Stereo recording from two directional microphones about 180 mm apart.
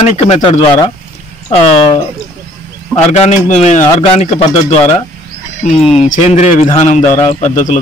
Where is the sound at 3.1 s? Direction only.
45° left (ahead or behind).